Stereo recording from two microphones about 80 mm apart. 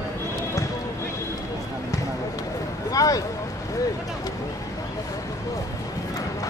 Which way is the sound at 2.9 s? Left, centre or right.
Left.